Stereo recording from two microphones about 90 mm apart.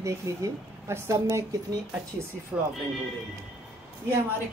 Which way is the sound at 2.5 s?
25° right (ahead or behind).